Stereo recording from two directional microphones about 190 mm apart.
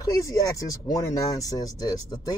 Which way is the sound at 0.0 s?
15° left (ahead or behind).